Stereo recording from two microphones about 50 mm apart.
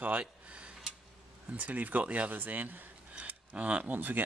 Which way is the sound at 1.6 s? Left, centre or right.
Right.